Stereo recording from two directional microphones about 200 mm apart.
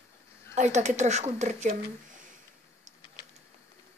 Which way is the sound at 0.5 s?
35° right (ahead or behind).